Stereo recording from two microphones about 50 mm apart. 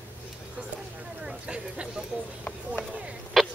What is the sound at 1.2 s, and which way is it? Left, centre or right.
Speech, centre.